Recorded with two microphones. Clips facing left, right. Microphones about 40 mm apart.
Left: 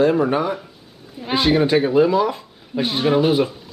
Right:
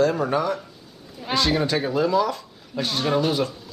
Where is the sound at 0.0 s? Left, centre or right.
Left.